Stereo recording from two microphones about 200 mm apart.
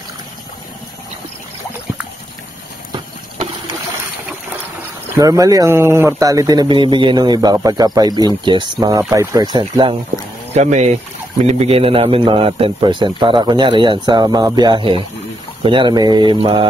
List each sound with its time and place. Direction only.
5.1 s speech: 15° right (ahead or behind)
10.1 s speech: 35° right (ahead or behind)